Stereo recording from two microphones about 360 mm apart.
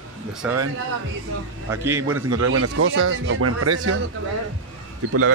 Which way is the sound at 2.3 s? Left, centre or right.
Right.